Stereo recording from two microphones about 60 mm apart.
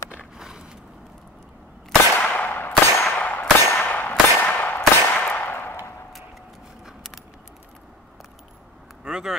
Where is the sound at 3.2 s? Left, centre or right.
Left.